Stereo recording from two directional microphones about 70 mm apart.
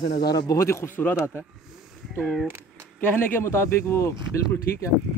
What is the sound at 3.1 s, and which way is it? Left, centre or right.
Speech, left.